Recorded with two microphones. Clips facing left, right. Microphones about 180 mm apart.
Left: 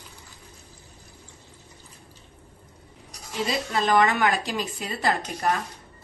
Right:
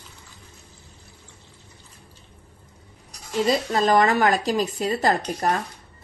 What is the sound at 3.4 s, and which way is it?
Speech, 40° right (ahead or behind).